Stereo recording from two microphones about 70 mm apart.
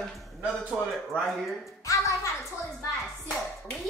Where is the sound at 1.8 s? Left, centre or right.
Left.